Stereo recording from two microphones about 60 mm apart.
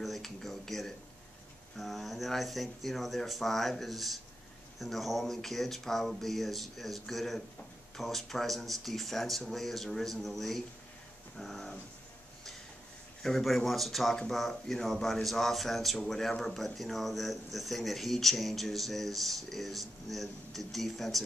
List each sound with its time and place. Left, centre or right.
0.0 s speech: centre
13.2 s speech: centre